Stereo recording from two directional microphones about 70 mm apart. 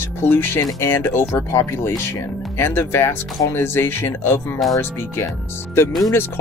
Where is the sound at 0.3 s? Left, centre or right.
Left.